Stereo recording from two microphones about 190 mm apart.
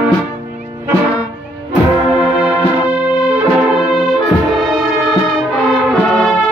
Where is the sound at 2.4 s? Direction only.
5° right (ahead or behind).